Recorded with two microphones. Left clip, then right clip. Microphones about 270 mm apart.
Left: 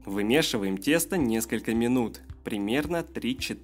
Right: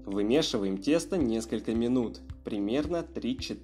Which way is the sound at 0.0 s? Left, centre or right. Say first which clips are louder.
Left 2 dB; left.